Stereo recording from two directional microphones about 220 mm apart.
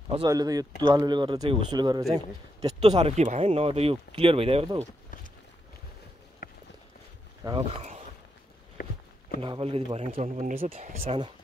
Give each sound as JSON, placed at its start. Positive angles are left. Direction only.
{"t": 0.1, "sound": "speech", "side_deg": -20}
{"t": 2.8, "sound": "speech", "side_deg": -30}
{"t": 6.4, "sound": "run", "side_deg": 40}
{"t": 7.4, "sound": "speech", "side_deg": -15}
{"t": 8.8, "sound": "walk", "side_deg": 40}
{"t": 9.4, "sound": "speech", "side_deg": -25}